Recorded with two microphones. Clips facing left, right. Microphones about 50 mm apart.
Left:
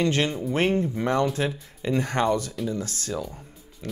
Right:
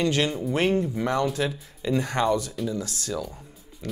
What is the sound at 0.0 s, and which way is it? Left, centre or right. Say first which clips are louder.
Speech: even; left.